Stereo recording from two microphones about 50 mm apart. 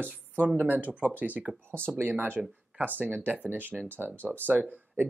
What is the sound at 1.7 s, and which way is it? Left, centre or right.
Speech, right.